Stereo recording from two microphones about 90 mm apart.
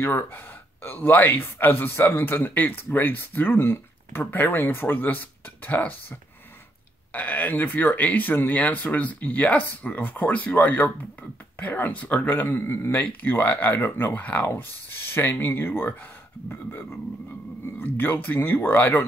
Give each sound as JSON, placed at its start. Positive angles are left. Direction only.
{"t": 0.0, "sound": "speech", "side_deg": 25}